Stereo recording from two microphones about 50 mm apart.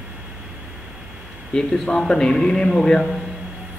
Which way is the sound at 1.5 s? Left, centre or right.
Centre.